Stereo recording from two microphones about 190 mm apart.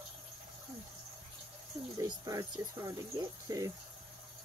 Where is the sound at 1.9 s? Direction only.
20° right (ahead or behind).